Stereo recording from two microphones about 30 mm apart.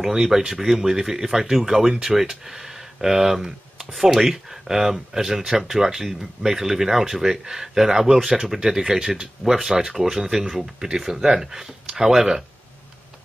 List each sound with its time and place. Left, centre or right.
0.1 s speech: centre
3.7 s a sound: centre
4.1 s speech: centre